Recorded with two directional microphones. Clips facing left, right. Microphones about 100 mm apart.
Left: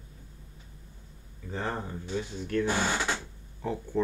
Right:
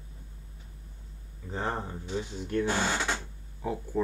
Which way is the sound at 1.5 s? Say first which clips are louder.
Right 1 dB; 25° right (ahead or behind).